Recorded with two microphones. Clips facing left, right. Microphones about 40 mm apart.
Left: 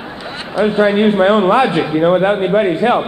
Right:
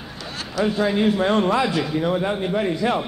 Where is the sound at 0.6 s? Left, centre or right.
Left.